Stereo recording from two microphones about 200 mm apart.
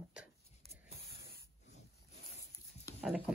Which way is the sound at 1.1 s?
55° left (ahead or behind).